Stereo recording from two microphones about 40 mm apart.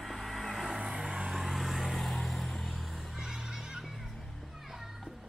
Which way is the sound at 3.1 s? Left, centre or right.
Centre.